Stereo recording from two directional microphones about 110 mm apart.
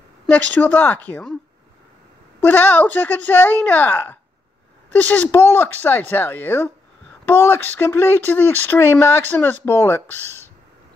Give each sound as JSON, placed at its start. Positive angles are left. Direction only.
{"t": 0.3, "sound": "speech", "side_deg": 15}
{"t": 2.4, "sound": "speech", "side_deg": 15}